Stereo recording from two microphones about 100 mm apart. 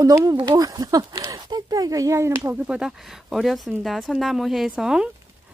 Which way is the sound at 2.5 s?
10° right (ahead or behind).